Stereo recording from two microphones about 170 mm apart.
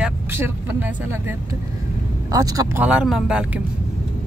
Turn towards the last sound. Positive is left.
turn(degrees=-5)  # may be behind; listen again after turning